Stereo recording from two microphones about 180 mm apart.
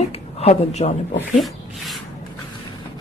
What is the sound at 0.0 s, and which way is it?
Speech, 35° left (ahead or behind).